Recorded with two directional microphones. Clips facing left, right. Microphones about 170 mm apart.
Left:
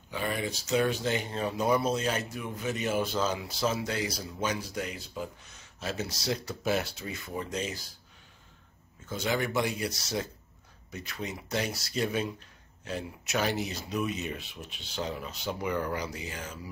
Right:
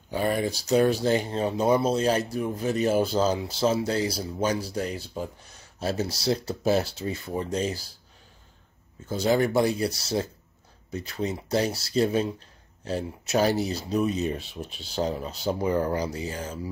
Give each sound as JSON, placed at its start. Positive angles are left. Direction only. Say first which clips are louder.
{"t": 0.1, "sound": "speech", "louder": "right 7 dB", "side_deg": -40}
{"t": 9.1, "sound": "speech", "louder": "right 7 dB", "side_deg": -35}